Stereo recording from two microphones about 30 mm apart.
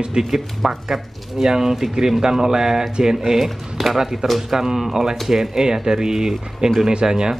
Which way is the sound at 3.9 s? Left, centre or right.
Centre.